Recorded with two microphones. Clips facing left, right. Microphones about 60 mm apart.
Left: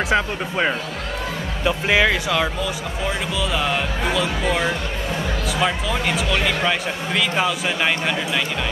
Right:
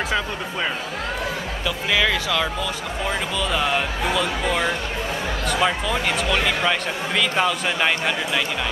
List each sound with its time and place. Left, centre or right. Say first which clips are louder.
0.1 s speech: left 4 dB; left
3.1 s speech: even; centre